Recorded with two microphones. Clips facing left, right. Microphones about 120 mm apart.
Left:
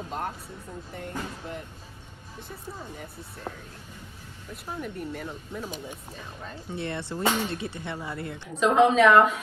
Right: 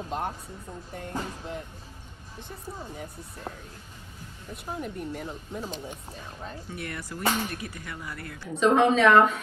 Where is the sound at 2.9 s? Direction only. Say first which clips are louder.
Right 1 dB; centre (ahead or behind).